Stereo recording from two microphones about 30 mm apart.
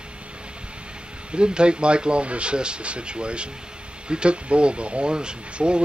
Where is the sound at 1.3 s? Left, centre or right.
Right.